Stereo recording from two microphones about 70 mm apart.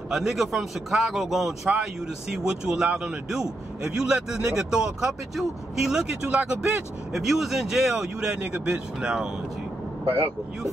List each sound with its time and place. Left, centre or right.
0.1 s a man's voice: centre